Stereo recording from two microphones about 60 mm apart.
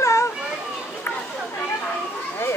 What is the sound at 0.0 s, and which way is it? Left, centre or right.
Children playing, left.